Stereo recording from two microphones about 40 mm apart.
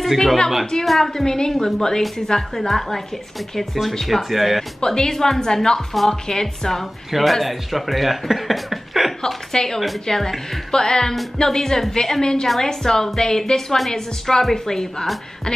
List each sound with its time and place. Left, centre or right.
0.0 s a woman's voice: centre
2.7 s speech: centre
4.8 s a woman's voice: centre
9.5 s a woman's voice: centre